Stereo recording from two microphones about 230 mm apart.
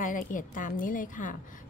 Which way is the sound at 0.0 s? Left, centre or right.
Left.